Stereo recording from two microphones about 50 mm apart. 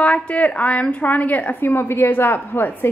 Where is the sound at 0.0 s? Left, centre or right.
Left.